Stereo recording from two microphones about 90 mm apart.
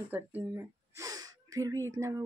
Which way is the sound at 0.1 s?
20° right (ahead or behind).